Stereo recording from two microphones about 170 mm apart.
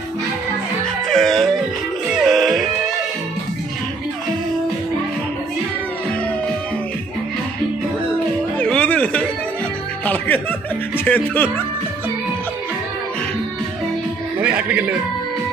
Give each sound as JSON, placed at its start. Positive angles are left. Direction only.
{"t": 1.0, "sound": "music", "side_deg": 0}
{"t": 8.5, "sound": "music", "side_deg": 5}
{"t": 10.0, "sound": "speech", "side_deg": 10}
{"t": 14.4, "sound": "a man's voice", "side_deg": -10}